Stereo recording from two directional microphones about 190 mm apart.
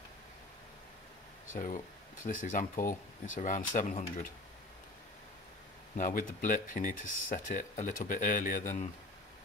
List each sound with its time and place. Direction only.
1.5 s speech: 40° left (ahead or behind)
5.9 s speech: 45° left (ahead or behind)